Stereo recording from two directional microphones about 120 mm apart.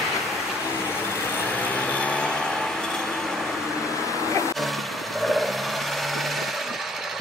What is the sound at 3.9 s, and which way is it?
Vehicle, 25° left (ahead or behind).